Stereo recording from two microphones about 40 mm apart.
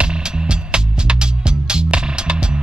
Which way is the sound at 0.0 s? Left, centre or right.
Right.